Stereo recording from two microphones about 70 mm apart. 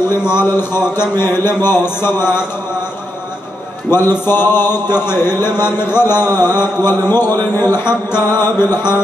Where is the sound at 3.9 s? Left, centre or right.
Left.